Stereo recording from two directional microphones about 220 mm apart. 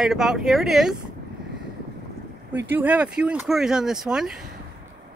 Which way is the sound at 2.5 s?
10° right (ahead or behind).